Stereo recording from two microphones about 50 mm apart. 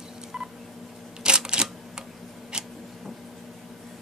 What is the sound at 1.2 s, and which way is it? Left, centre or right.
Camera, centre.